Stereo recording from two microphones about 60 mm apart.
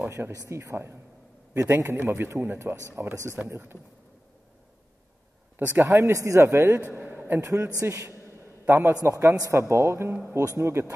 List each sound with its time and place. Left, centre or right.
0.5 s a man's voice: right
5.7 s a man's voice: right
6.1 s a man's voice: right
6.9 s a sound: right
7.8 s a man's voice: right
8.6 s a man's voice: right
9.0 s a man's voice: right
10.3 s speech: right